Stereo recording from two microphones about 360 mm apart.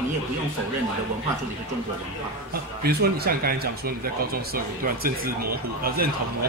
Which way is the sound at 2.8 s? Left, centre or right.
Right.